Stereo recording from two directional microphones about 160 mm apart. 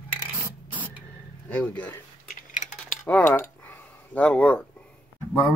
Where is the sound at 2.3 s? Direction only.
50° left (ahead or behind).